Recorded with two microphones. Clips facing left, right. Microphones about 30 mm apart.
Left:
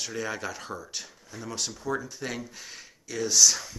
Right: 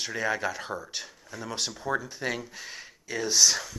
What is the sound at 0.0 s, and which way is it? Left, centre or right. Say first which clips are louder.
Speech: right 4 dB; centre.